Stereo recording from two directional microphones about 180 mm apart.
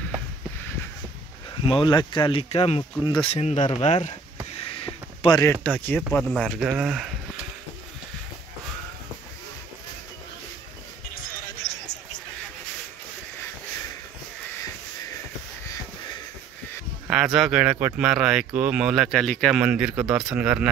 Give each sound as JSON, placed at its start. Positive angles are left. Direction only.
{"t": 1.6, "sound": "speech", "side_deg": 30}
{"t": 4.6, "sound": "a sound", "side_deg": 30}
{"t": 5.4, "sound": "speech", "side_deg": 10}
{"t": 17.1, "sound": "speech", "side_deg": -5}